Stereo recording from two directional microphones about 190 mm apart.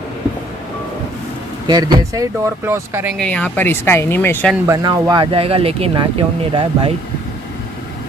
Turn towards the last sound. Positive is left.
turn(degrees=-30)  # may be behind; listen again after turning